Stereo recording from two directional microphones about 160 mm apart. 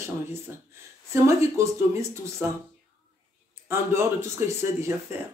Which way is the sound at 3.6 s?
15° right (ahead or behind).